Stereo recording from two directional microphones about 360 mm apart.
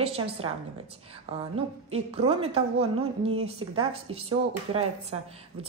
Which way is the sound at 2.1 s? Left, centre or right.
Centre.